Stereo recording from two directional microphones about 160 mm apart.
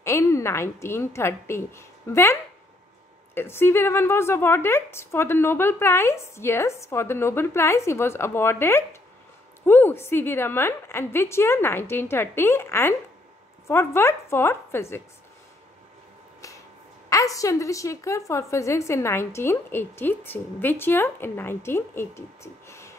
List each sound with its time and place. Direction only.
0.0 s a woman's voice: 15° left (ahead or behind)
3.3 s a woman's voice: 15° left (ahead or behind)
16.3 s a sound: 20° left (ahead or behind)
17.1 s a woman's voice: 20° left (ahead or behind)